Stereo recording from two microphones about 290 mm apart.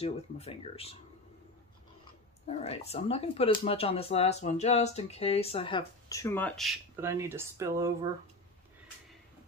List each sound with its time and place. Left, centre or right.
0.0 s speech: centre
2.4 s speech: left; by 8.1 s centre